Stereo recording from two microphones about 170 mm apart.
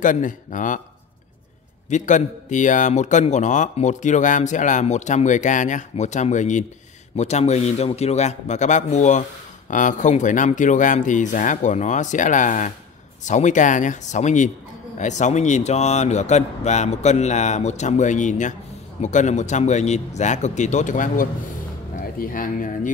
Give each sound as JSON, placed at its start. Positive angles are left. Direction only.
{"t": 0.0, "sound": "a man's voice", "side_deg": 50}
{"t": 1.9, "sound": "a man's voice", "side_deg": 45}